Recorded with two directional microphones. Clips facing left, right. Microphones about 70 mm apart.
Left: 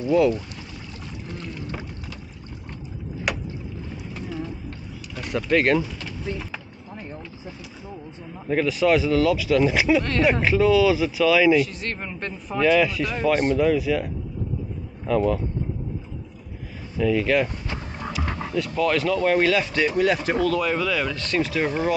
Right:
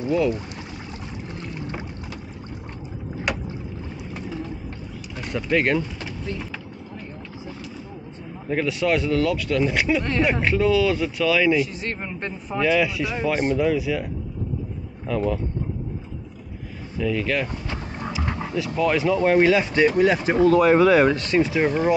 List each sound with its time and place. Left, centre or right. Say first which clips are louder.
0.0 s speech: left 3 dB; centre
3.3 s rowboat: right 1 dB; centre
5.2 s speech: left 1 dB; centre
6.3 s speech: left 1 dB; centre
8.5 s speech: left 2 dB; centre
11.6 s speech: even; centre
15.0 s speech: left 3 dB; centre
17.0 s speech: left 3 dB; centre
18.8 s speech: right 2 dB; centre
20.4 s speech: right 11 dB; right
21.2 s speech: right 4 dB; centre